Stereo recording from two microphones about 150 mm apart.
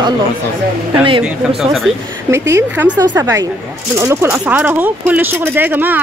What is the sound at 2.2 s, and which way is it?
Speech, 20° right (ahead or behind).